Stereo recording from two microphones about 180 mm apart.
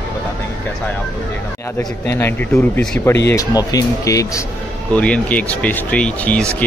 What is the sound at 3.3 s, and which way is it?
Speech, 20° left (ahead or behind).